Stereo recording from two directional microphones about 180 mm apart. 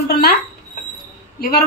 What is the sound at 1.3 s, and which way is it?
Speech, 55° left (ahead or behind).